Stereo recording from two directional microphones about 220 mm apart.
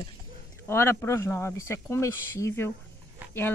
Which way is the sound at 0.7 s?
10° left (ahead or behind).